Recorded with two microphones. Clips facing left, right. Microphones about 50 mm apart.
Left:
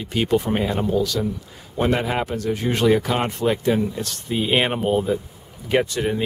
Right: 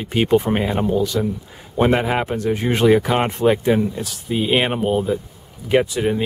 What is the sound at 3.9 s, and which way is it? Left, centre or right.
Speech, centre.